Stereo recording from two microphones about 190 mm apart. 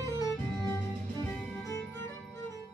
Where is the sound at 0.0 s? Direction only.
15° left (ahead or behind).